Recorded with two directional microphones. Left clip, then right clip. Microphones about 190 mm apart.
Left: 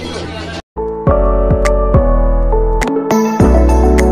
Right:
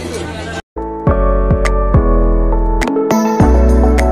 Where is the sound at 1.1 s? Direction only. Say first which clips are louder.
Left 2 dB; centre (ahead or behind).